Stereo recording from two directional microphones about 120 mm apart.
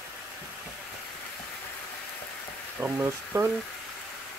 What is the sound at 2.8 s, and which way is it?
Speech, 20° right (ahead or behind).